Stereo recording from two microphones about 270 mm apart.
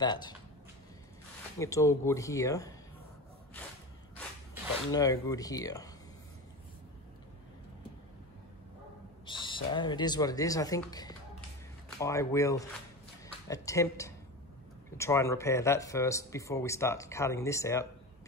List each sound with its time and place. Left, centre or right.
0.0 s speech: centre
1.6 s speech: centre
4.9 s speech: centre
9.2 s speech: centre